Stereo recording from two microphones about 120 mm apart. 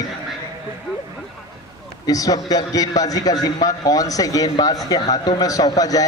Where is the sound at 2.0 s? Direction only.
30° left (ahead or behind).